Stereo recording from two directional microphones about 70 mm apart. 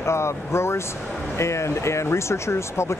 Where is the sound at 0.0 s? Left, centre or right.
Left.